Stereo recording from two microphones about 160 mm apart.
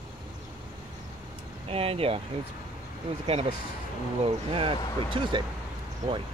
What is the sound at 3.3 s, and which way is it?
Speech, 40° right (ahead or behind).